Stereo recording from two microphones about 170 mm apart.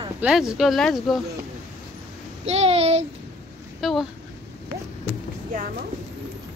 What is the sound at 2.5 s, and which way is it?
Speech, 35° right (ahead or behind).